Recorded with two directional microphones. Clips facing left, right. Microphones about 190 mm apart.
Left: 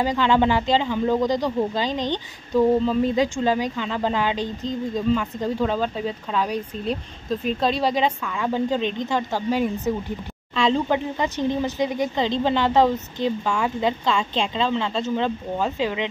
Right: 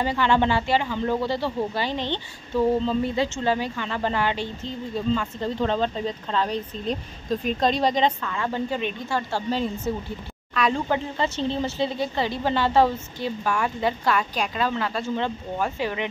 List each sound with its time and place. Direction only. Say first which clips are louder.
0.0 s speech: left 2 dB; 15° left (ahead or behind)